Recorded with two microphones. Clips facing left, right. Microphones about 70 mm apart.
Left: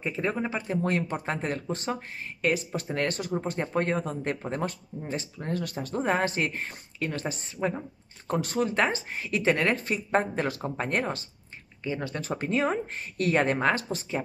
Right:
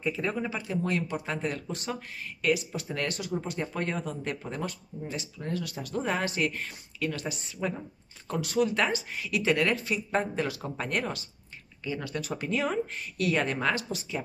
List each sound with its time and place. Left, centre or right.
0.0 s speech: left